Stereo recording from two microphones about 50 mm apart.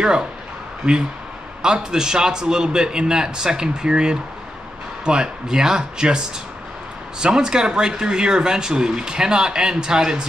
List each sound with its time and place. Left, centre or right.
0.8 s speech: centre